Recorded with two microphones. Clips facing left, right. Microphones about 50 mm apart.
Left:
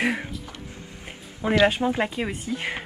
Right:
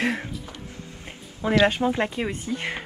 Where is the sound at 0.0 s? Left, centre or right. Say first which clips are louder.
Left 1 dB; centre.